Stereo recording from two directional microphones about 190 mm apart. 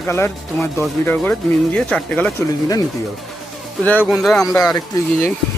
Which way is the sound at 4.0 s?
Centre (ahead or behind).